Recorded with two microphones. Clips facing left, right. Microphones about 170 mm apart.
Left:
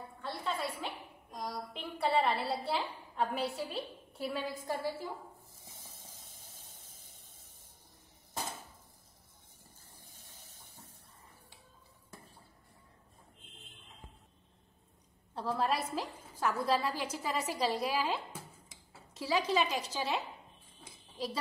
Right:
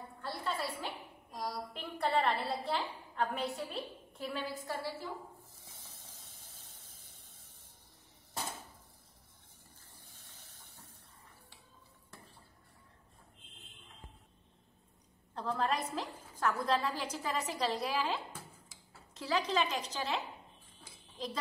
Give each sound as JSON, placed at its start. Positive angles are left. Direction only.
{"t": 0.4, "sound": "music", "side_deg": 0}
{"t": 0.7, "sound": "a woman's voice", "side_deg": 0}
{"t": 4.3, "sound": "a woman's voice", "side_deg": 15}
{"t": 5.9, "sound": "vehicle", "side_deg": 10}
{"t": 6.1, "sound": "vehicle", "side_deg": 45}
{"t": 6.4, "sound": "vehicle", "side_deg": 10}
{"t": 10.1, "sound": "hiss", "side_deg": 10}
{"t": 15.3, "sound": "a woman's voice", "side_deg": 10}